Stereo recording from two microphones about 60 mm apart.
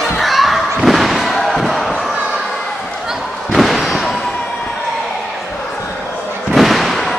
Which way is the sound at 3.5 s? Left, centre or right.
Centre.